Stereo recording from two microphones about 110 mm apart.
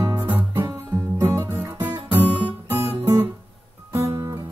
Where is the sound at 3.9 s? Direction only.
30° right (ahead or behind).